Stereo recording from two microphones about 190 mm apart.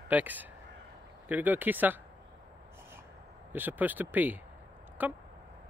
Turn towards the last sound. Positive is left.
turn(degrees=-10)  # may be behind; listen again after turning